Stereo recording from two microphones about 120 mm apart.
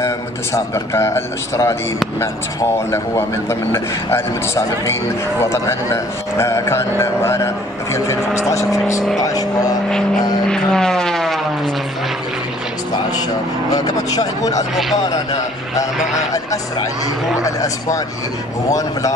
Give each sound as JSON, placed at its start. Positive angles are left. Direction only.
{"t": 0.0, "sound": "a man's voice", "side_deg": 25}
{"t": 2.9, "sound": "a man's voice", "side_deg": 20}
{"t": 9.8, "sound": "vehicle", "side_deg": 5}
{"t": 13.7, "sound": "speech", "side_deg": 30}
{"t": 17.4, "sound": "a man's voice", "side_deg": 30}